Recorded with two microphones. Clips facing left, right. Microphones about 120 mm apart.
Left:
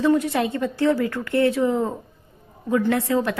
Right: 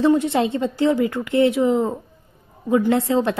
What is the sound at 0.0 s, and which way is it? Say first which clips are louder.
A woman's voice: right 2 dB; 25° right (ahead or behind).